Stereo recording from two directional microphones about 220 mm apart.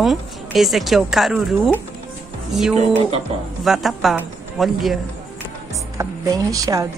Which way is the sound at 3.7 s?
Centre (ahead or behind).